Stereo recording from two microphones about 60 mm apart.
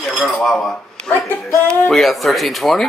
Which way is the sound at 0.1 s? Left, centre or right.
Centre.